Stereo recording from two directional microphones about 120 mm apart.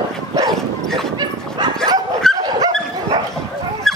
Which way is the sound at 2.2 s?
5° left (ahead or behind).